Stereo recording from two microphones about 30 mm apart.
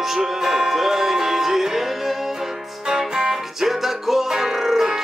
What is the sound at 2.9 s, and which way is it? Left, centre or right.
Music, centre.